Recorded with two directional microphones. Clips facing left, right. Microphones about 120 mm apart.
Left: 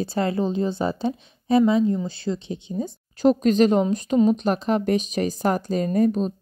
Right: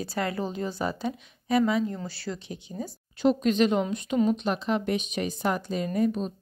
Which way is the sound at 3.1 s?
40° left (ahead or behind).